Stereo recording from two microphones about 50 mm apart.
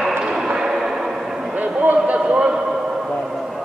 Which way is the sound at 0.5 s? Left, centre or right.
Centre.